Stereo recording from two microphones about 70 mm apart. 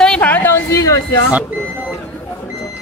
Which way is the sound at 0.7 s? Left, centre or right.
Left.